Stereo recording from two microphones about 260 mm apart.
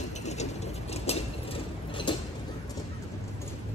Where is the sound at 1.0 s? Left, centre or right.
Centre.